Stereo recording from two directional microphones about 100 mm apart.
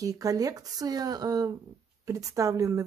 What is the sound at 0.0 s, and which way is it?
A woman's voice, 35° right (ahead or behind).